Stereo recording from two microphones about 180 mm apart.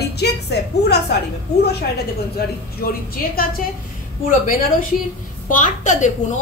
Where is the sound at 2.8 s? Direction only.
55° left (ahead or behind).